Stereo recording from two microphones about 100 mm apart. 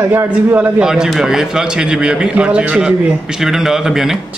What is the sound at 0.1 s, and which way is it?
Speech, 20° right (ahead or behind).